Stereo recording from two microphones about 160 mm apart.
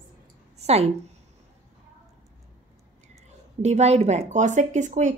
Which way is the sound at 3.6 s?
45° right (ahead or behind).